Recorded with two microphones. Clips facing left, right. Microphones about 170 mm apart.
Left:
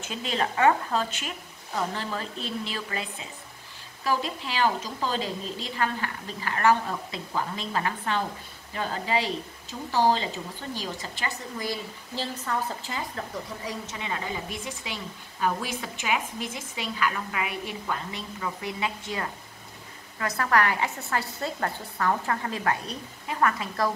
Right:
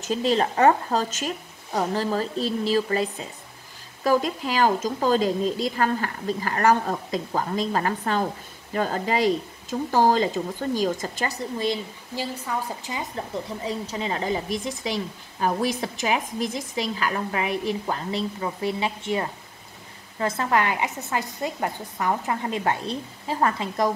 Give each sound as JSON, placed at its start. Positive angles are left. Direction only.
{"t": 0.0, "sound": "a woman's voice", "side_deg": -35}
{"t": 11.5, "sound": "a woman's voice", "side_deg": -25}
{"t": 12.2, "sound": "a woman's voice", "side_deg": -10}